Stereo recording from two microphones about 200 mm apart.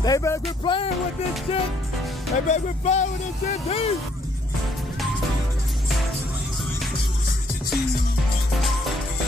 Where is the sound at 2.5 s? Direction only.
35° left (ahead or behind).